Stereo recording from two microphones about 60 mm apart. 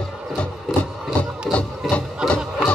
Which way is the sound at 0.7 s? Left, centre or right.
Centre.